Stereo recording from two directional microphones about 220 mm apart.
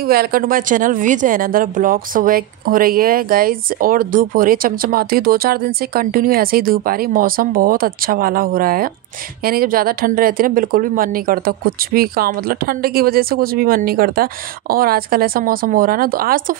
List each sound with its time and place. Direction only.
0.0 s a woman's voice: 45° right (ahead or behind)